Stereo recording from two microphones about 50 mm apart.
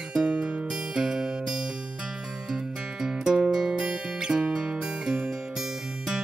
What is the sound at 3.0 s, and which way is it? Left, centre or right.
Music, centre.